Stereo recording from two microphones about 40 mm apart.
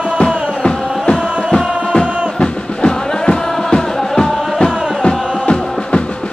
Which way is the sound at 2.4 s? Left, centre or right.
Left.